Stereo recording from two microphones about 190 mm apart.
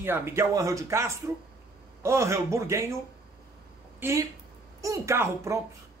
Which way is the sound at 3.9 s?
15° right (ahead or behind).